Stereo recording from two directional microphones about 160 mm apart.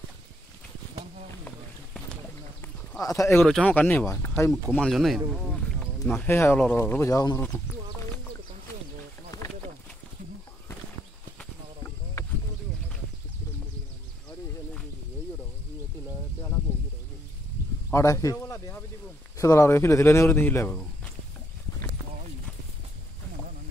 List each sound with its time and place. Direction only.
3.0 s speech: 20° left (ahead or behind)
3.4 s speech: 5° left (ahead or behind)
4.6 s speech: 5° left (ahead or behind)
6.0 s speech: 10° left (ahead or behind)
9.3 s a sound: 25° left (ahead or behind)
17.9 s a sound: 20° left (ahead or behind)
19.3 s speech: 20° left (ahead or behind)